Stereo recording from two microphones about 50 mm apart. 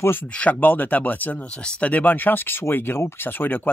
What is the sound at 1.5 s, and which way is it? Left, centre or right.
Speech, left.